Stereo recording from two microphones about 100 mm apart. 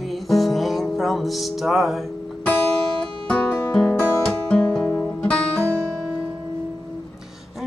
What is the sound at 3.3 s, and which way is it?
Music, 10° left (ahead or behind).